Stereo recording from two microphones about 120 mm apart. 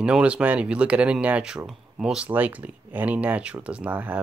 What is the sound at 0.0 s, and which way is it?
Speech, 10° right (ahead or behind).